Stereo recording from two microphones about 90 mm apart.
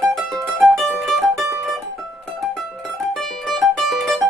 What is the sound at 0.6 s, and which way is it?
Music, centre (ahead or behind).